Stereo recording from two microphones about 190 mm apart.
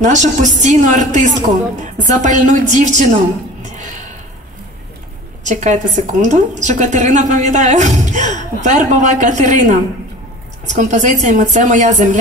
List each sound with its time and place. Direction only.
0.0 s a woman's voice: 40° right (ahead or behind)
5.4 s a woman's voice: 40° right (ahead or behind)